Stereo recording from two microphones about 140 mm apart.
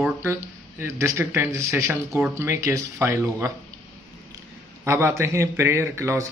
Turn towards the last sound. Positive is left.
turn(degrees=-20)  # may be behind; listen again after turning